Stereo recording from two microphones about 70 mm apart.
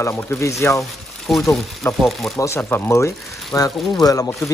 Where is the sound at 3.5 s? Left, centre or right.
Left.